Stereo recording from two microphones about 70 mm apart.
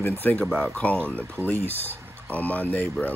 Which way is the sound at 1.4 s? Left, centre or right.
Left.